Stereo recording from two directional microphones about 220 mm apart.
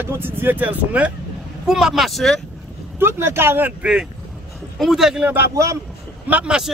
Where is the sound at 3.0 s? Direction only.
10° right (ahead or behind).